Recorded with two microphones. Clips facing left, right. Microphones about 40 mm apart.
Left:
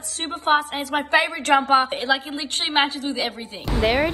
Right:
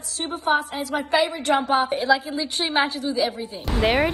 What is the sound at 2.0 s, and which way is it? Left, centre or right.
Speech, left.